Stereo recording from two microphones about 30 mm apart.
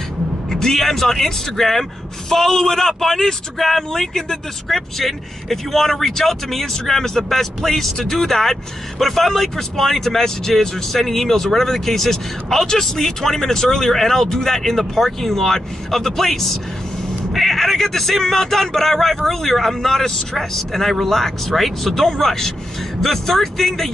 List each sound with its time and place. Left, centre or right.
0.5 s speech: centre